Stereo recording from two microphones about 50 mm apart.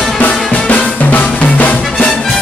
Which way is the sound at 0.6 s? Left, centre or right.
Left.